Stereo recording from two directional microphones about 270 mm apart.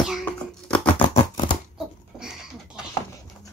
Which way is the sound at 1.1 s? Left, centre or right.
Left.